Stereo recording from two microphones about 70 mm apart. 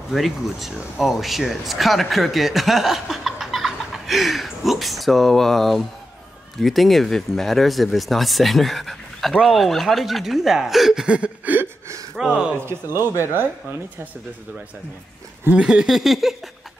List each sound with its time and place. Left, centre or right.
0.1 s speech: centre
11.1 s a sound: centre
12.5 s speech: right
15.5 s speech: centre